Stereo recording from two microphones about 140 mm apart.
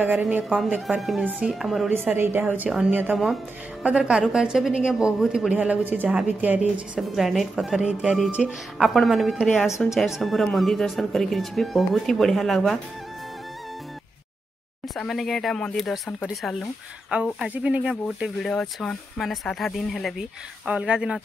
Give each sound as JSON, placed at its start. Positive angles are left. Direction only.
{"t": 0.0, "sound": "a woman's voice", "side_deg": -10}
{"t": 2.0, "sound": "a woman's voice", "side_deg": -15}
{"t": 9.7, "sound": "speech", "side_deg": 20}
{"t": 9.9, "sound": "a woman's voice", "side_deg": 0}
{"t": 15.0, "sound": "a woman's voice", "side_deg": 0}
{"t": 17.1, "sound": "a woman's voice", "side_deg": -5}
{"t": 18.0, "sound": "a woman's voice", "side_deg": 0}